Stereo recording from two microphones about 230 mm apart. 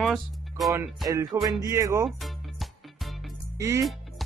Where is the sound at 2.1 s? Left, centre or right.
Centre.